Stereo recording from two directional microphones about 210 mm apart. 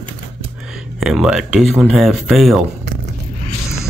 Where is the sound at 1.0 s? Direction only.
Centre (ahead or behind).